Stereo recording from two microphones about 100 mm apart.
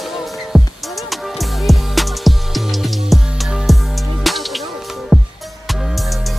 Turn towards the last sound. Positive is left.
turn(degrees=-5)  # may be behind; listen again after turning